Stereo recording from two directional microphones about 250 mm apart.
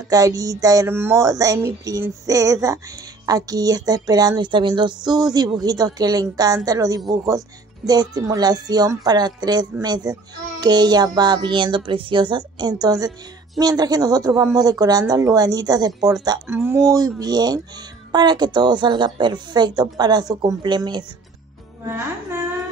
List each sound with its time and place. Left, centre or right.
0.1 s speech: centre
21.8 s music: centre